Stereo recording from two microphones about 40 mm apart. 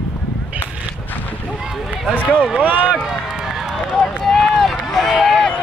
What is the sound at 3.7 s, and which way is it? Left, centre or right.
Run, centre.